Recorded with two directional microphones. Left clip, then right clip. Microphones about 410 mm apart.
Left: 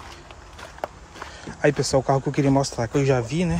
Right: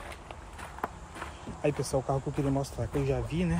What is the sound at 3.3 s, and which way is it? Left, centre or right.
Speech, centre.